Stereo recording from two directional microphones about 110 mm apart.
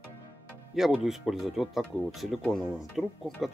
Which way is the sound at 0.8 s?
5° right (ahead or behind).